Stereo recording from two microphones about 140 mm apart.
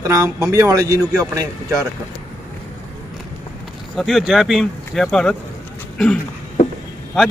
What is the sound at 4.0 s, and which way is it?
Speech, centre (ahead or behind).